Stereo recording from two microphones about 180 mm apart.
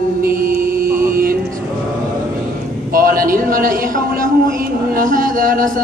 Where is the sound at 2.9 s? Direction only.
50° right (ahead or behind).